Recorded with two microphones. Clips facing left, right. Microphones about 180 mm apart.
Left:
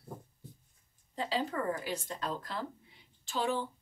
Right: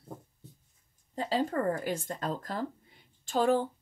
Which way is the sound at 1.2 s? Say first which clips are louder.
Right 4 dB; 45° right (ahead or behind).